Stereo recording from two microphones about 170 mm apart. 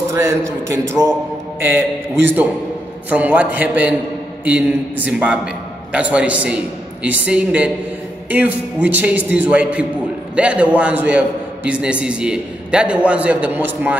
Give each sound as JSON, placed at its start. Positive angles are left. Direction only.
{"t": 0.1, "sound": "a man's voice", "side_deg": -15}